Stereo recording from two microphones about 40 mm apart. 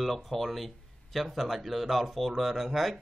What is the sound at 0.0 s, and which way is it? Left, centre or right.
Speech, centre.